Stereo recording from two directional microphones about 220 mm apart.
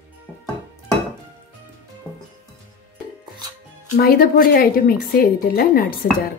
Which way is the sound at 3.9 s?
40° left (ahead or behind).